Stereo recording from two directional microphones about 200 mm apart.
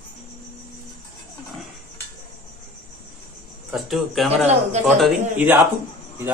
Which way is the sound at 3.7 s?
Centre (ahead or behind).